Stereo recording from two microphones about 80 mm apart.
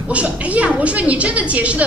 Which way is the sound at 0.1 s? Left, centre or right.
Centre.